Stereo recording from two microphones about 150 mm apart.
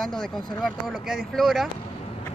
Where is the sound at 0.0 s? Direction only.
Centre (ahead or behind).